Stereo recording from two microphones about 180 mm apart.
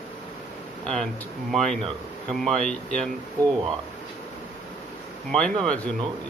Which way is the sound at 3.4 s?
20° right (ahead or behind).